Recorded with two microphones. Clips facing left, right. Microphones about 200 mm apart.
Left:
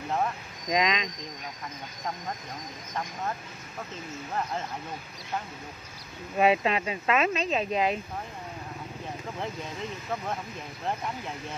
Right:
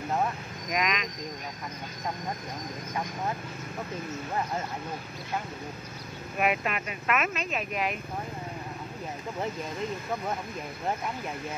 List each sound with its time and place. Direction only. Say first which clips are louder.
0.7 s speech: left 3 dB; 25° left (ahead or behind)
6.3 s speech: left 5 dB; 25° left (ahead or behind)